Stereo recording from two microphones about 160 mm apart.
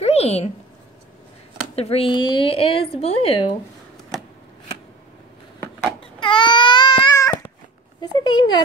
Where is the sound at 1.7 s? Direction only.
40° left (ahead or behind).